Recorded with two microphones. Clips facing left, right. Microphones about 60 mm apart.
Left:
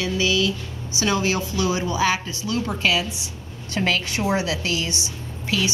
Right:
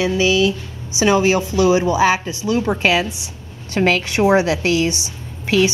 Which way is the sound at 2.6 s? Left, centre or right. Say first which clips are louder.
Right 3 dB; right.